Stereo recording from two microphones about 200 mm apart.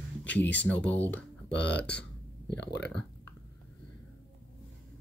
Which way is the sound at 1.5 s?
60° left (ahead or behind).